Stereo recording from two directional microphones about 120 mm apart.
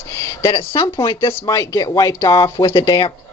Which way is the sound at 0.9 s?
35° left (ahead or behind).